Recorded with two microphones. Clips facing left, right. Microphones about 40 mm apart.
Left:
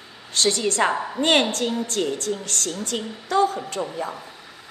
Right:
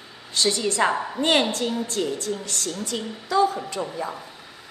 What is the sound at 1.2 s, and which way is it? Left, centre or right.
Speech, left.